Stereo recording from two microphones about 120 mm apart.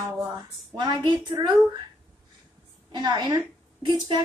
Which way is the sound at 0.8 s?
30° right (ahead or behind).